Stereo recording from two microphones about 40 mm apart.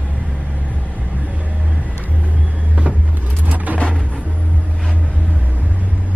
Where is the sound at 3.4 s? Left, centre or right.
Right.